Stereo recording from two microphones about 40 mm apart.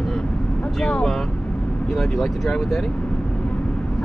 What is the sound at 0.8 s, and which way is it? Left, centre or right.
Speech, centre.